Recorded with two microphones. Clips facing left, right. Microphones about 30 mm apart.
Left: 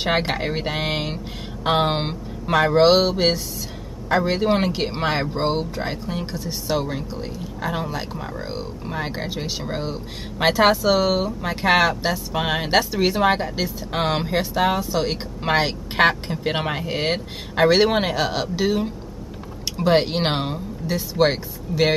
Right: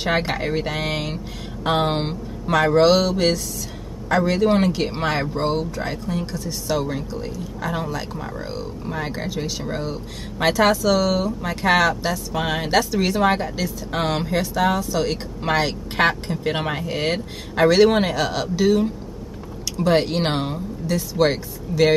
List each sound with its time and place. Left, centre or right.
0.0 s speech: centre
20.8 s speech: left
21.2 s speech: centre